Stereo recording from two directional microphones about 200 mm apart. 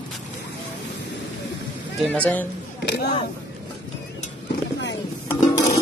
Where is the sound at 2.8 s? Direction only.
55° left (ahead or behind).